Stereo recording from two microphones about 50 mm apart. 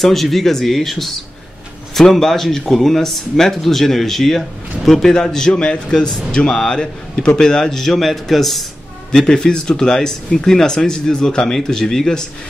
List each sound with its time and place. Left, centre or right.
0.0 s speech: centre